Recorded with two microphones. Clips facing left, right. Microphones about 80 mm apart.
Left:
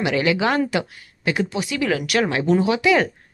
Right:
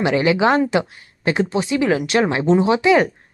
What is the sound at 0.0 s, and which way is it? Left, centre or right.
Speech, right.